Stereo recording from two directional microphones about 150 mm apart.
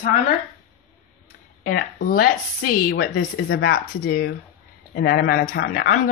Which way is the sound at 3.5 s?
90° left.